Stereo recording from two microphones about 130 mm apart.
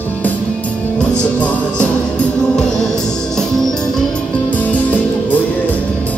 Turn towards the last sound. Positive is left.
turn(degrees=10)  # may be behind; listen again after turning